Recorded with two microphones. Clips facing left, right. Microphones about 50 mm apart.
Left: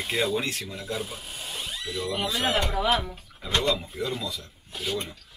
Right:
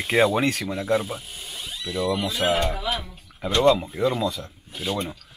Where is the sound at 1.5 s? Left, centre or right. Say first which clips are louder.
Right 1 dB; left.